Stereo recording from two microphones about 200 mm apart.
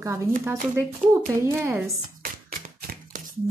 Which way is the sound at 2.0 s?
45° right (ahead or behind).